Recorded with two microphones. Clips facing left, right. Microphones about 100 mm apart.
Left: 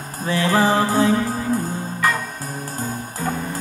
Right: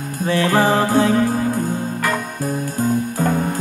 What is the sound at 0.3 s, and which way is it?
Music, 30° left (ahead or behind).